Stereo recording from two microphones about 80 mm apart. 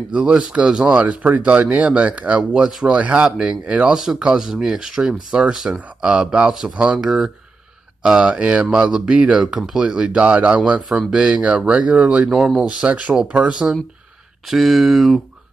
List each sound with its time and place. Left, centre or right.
0.1 s speech: centre
14.5 s speech: centre